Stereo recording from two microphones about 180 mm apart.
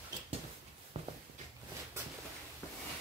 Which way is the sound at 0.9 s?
35° right (ahead or behind).